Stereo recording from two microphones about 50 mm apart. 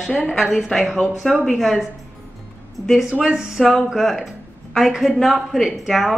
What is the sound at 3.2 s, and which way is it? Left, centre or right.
Speech, centre.